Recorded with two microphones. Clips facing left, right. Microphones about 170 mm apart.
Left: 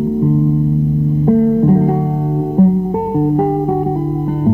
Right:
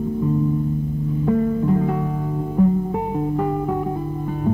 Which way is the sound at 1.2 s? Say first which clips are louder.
Left 8 dB; 40° left (ahead or behind).